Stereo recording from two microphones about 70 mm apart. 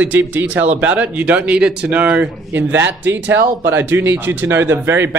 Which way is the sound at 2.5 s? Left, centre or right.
Right.